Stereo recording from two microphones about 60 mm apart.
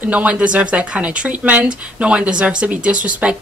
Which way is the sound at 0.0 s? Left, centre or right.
Right.